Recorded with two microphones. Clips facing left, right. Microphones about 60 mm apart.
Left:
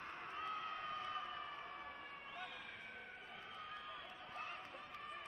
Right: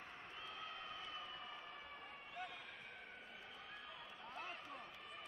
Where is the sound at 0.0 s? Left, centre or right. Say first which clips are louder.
Left 7 dB; left.